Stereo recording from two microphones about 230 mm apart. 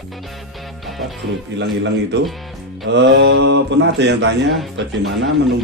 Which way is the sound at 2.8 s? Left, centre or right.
Right.